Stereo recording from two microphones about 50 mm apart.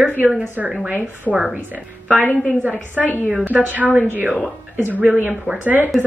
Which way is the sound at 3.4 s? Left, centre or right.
Right.